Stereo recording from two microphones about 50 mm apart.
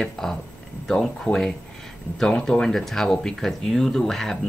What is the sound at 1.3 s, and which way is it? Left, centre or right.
Speech, left.